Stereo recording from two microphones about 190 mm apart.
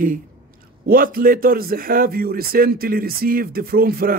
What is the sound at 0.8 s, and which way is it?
Speech, 50° right (ahead or behind).